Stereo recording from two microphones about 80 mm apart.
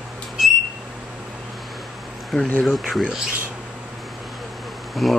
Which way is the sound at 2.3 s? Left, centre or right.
Centre.